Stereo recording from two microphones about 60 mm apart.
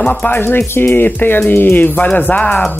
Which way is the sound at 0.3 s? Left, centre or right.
Left.